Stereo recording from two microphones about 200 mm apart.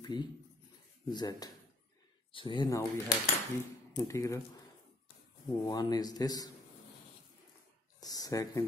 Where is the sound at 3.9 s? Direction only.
15° left (ahead or behind).